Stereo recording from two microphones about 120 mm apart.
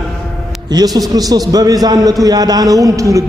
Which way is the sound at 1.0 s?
30° right (ahead or behind).